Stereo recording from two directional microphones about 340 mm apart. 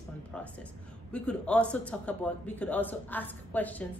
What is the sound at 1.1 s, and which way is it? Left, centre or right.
A man's voice, centre.